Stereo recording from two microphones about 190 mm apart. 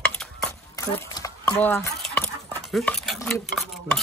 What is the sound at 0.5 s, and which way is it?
Stir, 15° left (ahead or behind).